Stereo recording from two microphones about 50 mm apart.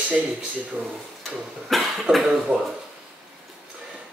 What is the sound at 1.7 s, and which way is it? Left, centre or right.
Cough, centre.